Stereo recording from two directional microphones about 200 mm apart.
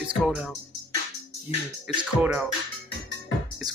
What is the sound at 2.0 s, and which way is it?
Speech, 10° right (ahead or behind).